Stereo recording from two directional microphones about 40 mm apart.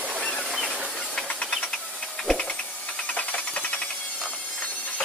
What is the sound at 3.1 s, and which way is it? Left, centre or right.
Hiss, left.